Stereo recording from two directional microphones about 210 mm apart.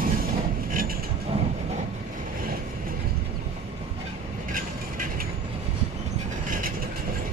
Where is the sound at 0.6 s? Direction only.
40° right (ahead or behind).